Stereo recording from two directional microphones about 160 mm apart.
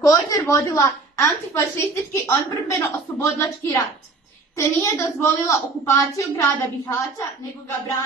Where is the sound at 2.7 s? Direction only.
20° left (ahead or behind).